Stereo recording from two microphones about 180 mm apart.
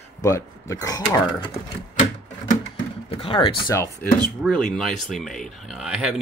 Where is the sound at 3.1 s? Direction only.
30° left (ahead or behind).